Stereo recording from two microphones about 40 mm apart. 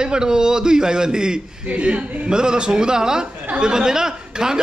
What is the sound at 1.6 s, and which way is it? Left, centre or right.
A man's voice, right.